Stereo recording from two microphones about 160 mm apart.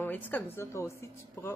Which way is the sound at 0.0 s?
10° left (ahead or behind).